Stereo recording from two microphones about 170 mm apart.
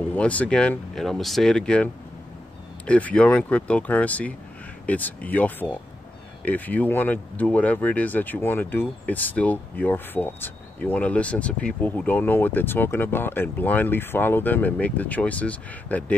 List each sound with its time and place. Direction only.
0.1 s speech: 10° left (ahead or behind)